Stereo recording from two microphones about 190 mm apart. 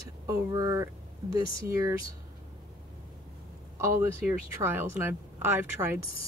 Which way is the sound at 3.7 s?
15° right (ahead or behind).